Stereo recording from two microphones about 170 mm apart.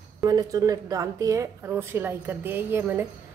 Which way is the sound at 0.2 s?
20° right (ahead or behind).